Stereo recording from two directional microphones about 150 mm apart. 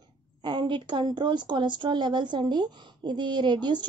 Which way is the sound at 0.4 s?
30° right (ahead or behind).